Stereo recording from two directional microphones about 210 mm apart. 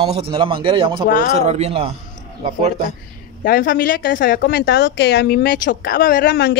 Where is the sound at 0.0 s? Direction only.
30° right (ahead or behind).